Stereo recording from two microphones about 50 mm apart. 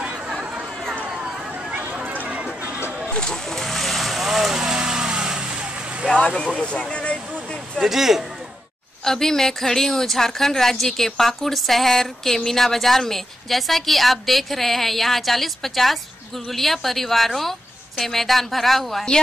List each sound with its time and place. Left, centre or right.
1.7 s a sound: right
3.1 s vehicle: centre
6.1 s a sound: centre
6.4 s speech: centre
7.8 s speech: centre
9.0 s a woman's voice: centre